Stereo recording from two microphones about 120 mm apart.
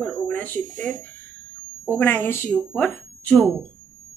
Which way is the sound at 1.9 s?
15° left (ahead or behind).